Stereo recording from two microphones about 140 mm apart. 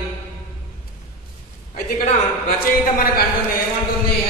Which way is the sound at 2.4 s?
90° left.